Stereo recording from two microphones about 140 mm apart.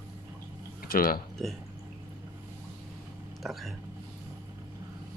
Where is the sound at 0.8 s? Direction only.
90° left.